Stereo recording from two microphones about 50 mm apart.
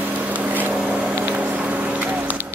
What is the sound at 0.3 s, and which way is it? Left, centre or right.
Vehicle, right.